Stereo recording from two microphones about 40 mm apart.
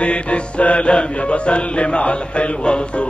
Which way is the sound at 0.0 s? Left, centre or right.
Left.